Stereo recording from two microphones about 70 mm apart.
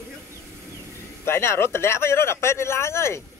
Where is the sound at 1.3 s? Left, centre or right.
Left.